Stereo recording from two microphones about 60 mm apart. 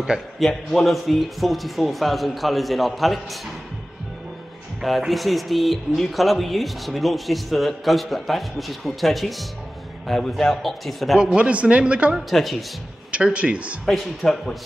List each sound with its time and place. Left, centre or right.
0.0 s a man's voice: centre
0.5 s speech: centre
4.8 s speech: centre
11.1 s a man's voice: centre
12.3 s speech: centre
13.1 s a man's voice: right
13.8 s speech: centre